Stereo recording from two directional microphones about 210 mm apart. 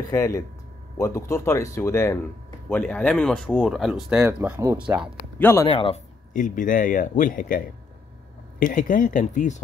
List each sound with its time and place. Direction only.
0.1 s speech: 15° left (ahead or behind); by 5.0 s 5° right (ahead or behind)
5.4 s speech: 10° left (ahead or behind)
5.7 s a man's voice: 25° left (ahead or behind)
6.3 s a man's voice: 40° left (ahead or behind)